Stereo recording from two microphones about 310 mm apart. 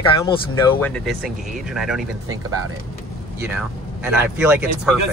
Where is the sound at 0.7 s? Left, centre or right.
Centre.